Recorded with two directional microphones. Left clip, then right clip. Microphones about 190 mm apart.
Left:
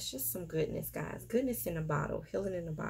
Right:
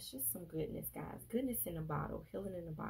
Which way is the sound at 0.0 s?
15° left (ahead or behind).